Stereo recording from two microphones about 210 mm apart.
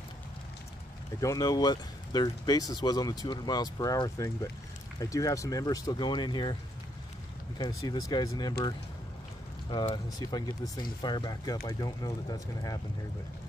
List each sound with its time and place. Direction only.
1.2 s speech: 15° left (ahead or behind)
7.5 s speech: 20° left (ahead or behind)
9.7 s speech: 20° left (ahead or behind)